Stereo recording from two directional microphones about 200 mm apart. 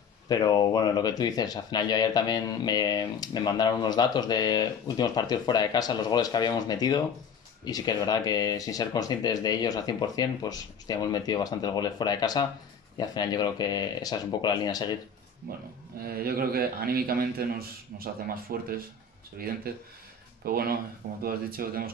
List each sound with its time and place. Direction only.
0.3 s speech: 20° left (ahead or behind)
15.5 s a man's voice: 45° right (ahead or behind)